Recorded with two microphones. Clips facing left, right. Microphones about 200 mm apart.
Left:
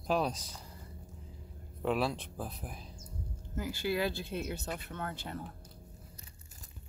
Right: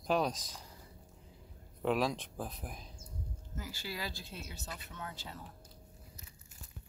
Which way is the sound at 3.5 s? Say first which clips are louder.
Left 10 dB; 55° left (ahead or behind).